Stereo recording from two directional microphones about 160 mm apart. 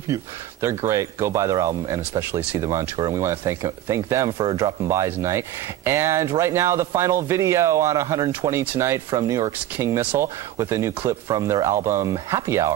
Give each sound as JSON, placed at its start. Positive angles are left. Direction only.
{"t": 0.1, "sound": "speech", "side_deg": -15}
{"t": 4.3, "sound": "speech", "side_deg": -35}
{"t": 4.6, "sound": "speech", "side_deg": -20}